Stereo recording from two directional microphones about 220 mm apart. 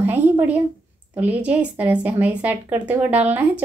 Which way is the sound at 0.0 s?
10° right (ahead or behind).